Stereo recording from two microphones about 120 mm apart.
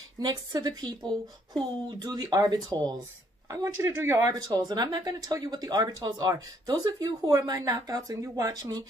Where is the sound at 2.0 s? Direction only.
35° right (ahead or behind).